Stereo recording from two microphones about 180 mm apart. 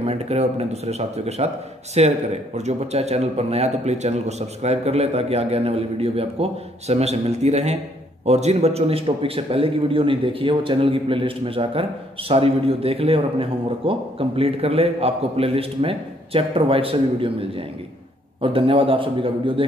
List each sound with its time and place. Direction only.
0.0 s a man's voice: 35° right (ahead or behind)